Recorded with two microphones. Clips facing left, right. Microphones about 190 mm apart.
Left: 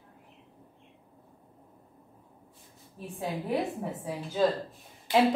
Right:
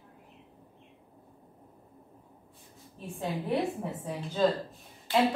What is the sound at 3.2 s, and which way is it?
A woman's voice, centre (ahead or behind).